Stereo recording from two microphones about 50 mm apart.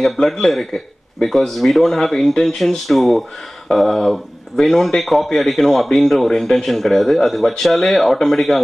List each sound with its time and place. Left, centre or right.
0.0 s speech: centre